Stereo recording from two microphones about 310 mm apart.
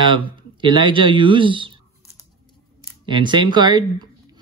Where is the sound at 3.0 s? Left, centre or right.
Centre.